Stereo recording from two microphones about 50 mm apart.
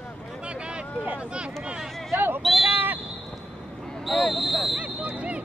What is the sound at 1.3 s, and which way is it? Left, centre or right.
Speech, right.